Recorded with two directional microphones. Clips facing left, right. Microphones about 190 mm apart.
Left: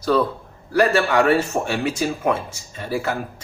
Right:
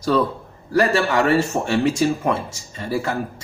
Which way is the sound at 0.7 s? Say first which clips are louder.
Left 1 dB; 5° left (ahead or behind).